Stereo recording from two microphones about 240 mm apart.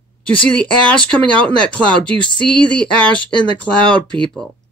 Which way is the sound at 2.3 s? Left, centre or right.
Centre.